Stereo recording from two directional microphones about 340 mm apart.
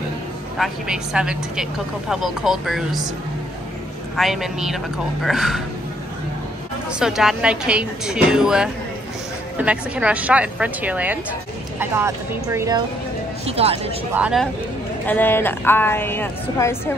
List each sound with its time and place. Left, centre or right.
0.6 s a woman's voice: centre
4.2 s a woman's voice: centre
6.9 s a woman's voice: centre
14.1 s a woman's voice: centre